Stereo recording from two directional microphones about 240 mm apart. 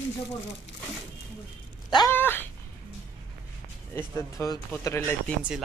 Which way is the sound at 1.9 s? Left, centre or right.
Centre.